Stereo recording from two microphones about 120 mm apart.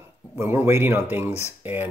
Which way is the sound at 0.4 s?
20° right (ahead or behind).